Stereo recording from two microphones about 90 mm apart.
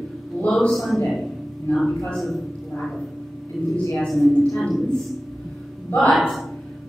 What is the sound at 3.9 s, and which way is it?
Speech, centre (ahead or behind).